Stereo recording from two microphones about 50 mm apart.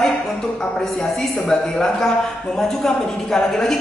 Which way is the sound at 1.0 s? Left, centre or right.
Centre.